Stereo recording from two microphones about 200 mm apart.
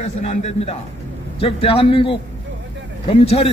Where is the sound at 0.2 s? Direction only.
35° left (ahead or behind).